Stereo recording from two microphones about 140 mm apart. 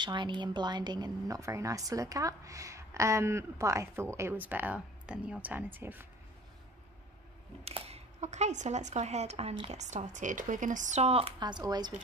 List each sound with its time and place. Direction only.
0.0 s speech: 35° right (ahead or behind); by 6.0 s 15° right (ahead or behind)
7.6 s speech: 45° right (ahead or behind)
11.3 s speech: 30° right (ahead or behind)